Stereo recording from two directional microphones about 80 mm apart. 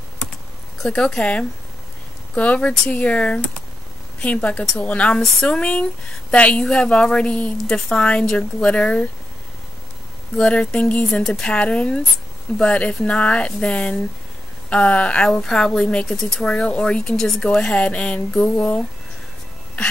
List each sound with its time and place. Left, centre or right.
0.8 s speech: centre
10.3 s speech: centre